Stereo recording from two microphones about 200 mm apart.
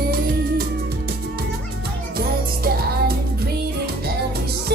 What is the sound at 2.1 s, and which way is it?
Music, 50° right (ahead or behind).